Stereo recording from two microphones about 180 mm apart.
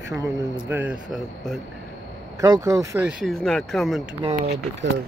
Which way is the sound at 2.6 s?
20° right (ahead or behind).